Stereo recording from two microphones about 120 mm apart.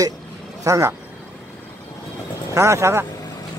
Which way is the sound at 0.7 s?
25° right (ahead or behind).